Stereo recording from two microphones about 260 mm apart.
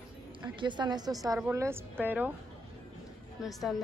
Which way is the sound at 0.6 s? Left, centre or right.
Centre.